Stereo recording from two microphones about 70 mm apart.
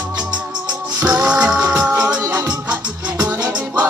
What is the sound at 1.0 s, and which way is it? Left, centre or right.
Music, centre.